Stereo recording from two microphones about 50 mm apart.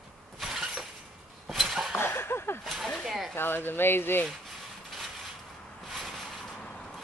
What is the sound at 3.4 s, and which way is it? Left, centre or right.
Speech, left.